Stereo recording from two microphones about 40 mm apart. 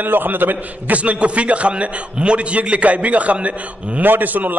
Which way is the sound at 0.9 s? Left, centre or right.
Right.